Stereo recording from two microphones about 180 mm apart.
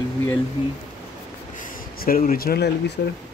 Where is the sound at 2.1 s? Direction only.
55° left (ahead or behind).